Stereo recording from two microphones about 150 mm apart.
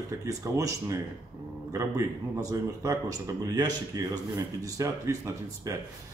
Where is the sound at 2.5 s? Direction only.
20° right (ahead or behind).